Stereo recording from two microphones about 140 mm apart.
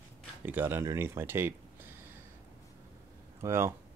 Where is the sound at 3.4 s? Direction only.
20° right (ahead or behind).